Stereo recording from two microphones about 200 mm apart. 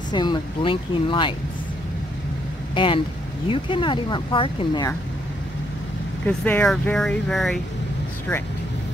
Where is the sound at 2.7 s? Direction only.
25° left (ahead or behind).